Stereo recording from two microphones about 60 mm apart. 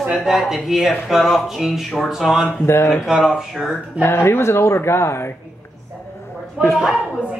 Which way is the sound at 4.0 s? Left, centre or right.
Left.